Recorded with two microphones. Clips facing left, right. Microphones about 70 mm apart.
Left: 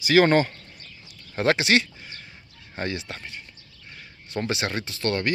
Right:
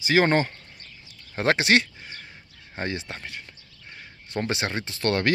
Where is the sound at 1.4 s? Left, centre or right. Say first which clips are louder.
Even; right.